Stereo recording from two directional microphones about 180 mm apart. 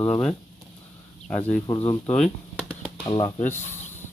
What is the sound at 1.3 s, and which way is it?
Speech, 10° left (ahead or behind).